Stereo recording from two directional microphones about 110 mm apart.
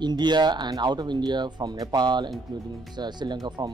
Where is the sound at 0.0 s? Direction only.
40° right (ahead or behind).